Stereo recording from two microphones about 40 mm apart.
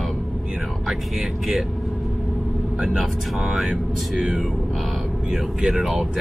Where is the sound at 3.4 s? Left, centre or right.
Centre.